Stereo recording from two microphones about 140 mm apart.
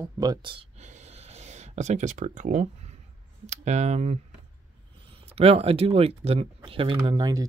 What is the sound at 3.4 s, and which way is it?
Speech, 55° right (ahead or behind).